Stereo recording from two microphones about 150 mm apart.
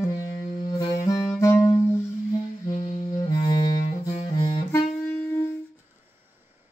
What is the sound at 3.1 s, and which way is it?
Music, 25° left (ahead or behind).